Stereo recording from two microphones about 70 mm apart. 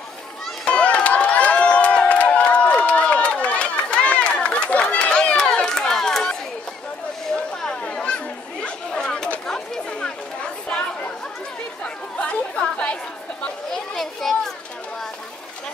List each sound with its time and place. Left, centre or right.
0.7 s crowd: centre
7.6 s chatter: centre
12.2 s chatter: centre
13.9 s children playing: centre